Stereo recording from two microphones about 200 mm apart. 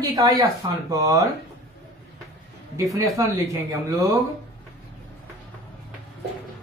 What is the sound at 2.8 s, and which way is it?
Speech, 15° right (ahead or behind).